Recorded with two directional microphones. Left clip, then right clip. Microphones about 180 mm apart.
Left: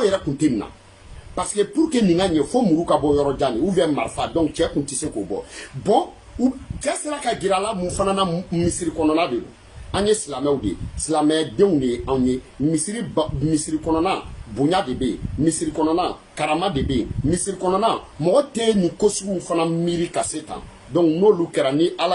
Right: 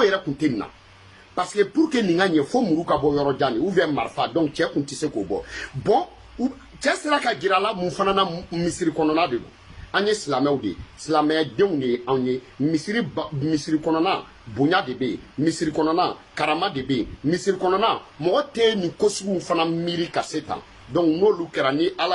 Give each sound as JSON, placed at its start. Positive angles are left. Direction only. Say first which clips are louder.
{"t": 0.0, "sound": "speech", "louder": "left 1 dB", "side_deg": 20}